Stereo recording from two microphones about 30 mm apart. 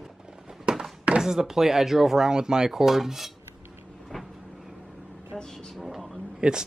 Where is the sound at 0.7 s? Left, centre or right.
Right.